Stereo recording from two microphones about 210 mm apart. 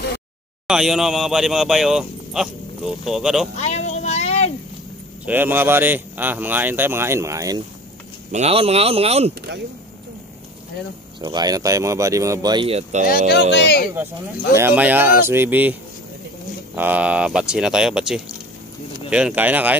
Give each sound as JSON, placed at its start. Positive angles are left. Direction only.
{"t": 0.7, "sound": "speech", "side_deg": -5}
{"t": 3.5, "sound": "a sound", "side_deg": 30}
{"t": 5.2, "sound": "speech", "side_deg": -10}
{"t": 8.3, "sound": "speech", "side_deg": -30}
{"t": 11.1, "sound": "speech", "side_deg": -20}
{"t": 13.3, "sound": "speech", "side_deg": 50}
{"t": 14.5, "sound": "speech", "side_deg": -10}
{"t": 16.7, "sound": "speech", "side_deg": -10}